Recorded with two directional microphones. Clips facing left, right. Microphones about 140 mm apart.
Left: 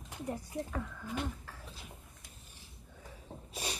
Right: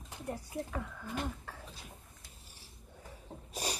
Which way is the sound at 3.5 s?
40° right (ahead or behind).